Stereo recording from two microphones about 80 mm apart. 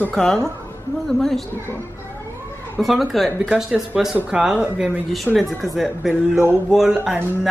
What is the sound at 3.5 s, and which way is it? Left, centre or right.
A woman's voice, centre.